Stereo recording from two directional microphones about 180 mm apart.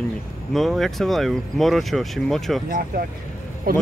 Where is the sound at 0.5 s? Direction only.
Centre (ahead or behind).